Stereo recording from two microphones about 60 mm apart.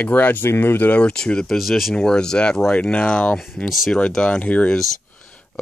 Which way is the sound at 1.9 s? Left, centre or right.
Centre.